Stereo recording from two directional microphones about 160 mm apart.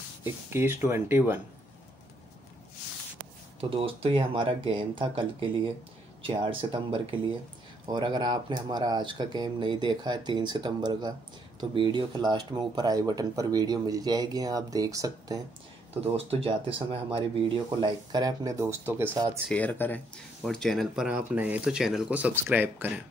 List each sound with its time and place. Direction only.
0.2 s speech: 15° right (ahead or behind)
3.7 s speech: 35° right (ahead or behind)
16.3 s speech: 35° right (ahead or behind)
19.5 s speech: 10° left (ahead or behind); by 22.9 s 15° right (ahead or behind)